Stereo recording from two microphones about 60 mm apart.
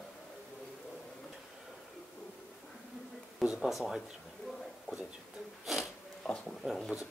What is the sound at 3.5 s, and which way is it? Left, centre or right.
Speech, centre.